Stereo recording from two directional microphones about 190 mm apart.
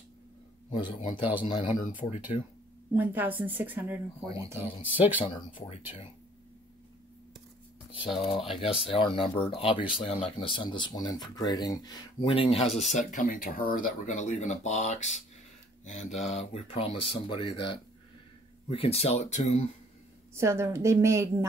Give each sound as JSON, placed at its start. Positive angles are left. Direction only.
{"t": 0.7, "sound": "a man's voice", "side_deg": 25}
{"t": 1.8, "sound": "speech", "side_deg": 45}
{"t": 2.9, "sound": "speech", "side_deg": -10}
{"t": 5.6, "sound": "speech", "side_deg": 30}
{"t": 7.9, "sound": "speech", "side_deg": 25}
{"t": 20.3, "sound": "speech", "side_deg": -15}